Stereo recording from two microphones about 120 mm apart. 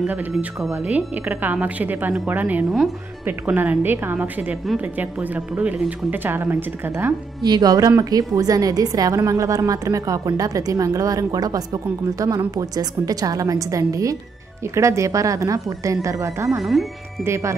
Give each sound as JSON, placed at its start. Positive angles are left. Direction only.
{"t": 0.0, "sound": "speech", "side_deg": -15}
{"t": 0.4, "sound": "a woman's voice", "side_deg": -5}
{"t": 7.4, "sound": "a woman's voice", "side_deg": -35}